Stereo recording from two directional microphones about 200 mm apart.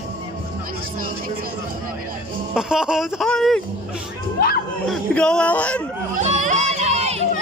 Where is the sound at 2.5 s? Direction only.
5° right (ahead or behind).